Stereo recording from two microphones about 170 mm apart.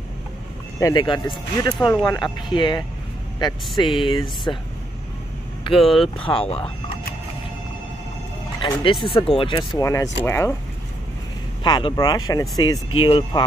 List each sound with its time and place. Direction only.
0.7 s speech: 20° left (ahead or behind)
5.6 s vehicle: 30° left (ahead or behind)
6.1 s speech: 35° left (ahead or behind)
8.6 s music: 30° left (ahead or behind)
9.0 s speech: 30° left (ahead or behind)
9.8 s speech: 20° left (ahead or behind)
11.6 s speech: 25° left (ahead or behind)